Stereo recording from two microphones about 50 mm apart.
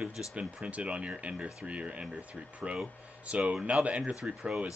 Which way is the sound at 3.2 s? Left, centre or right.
Right.